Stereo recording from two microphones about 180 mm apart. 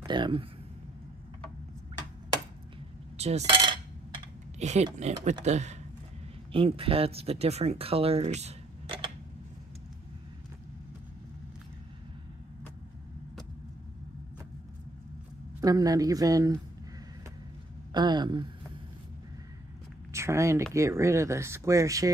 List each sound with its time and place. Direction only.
0.0 s speech: 25° right (ahead or behind)
3.2 s coin: 35° right (ahead or behind)
4.6 s speech: 40° right (ahead or behind)
15.6 s speech: 20° right (ahead or behind)
17.9 s speech: 25° right (ahead or behind)
20.1 s speech: 15° right (ahead or behind)